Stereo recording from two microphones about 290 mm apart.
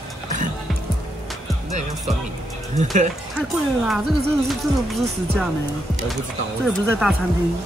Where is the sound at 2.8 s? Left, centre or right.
Right.